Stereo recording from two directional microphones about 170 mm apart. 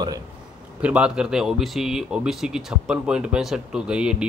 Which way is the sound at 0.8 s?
5° right (ahead or behind).